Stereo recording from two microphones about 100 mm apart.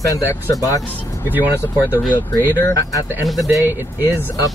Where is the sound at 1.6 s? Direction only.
25° left (ahead or behind).